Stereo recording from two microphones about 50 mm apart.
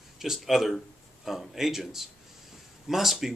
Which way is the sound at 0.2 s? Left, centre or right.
Centre.